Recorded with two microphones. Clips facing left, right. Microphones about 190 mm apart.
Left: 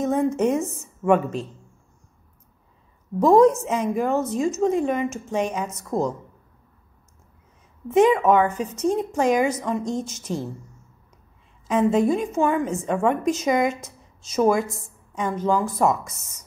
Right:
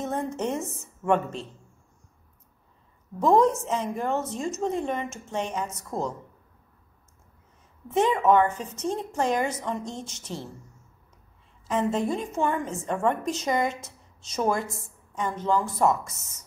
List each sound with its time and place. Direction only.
0.0 s a sound: 10° left (ahead or behind)
1.0 s a woman's voice: 10° left (ahead or behind)
3.2 s a woman's voice: 10° left (ahead or behind)
5.9 s speech: 45° left (ahead or behind)
7.9 s a woman's voice: 10° left (ahead or behind)
10.2 s speech: 45° left (ahead or behind)
11.6 s a woman's voice: 10° left (ahead or behind)